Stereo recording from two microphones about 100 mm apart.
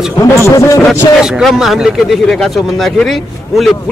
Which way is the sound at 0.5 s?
30° left (ahead or behind).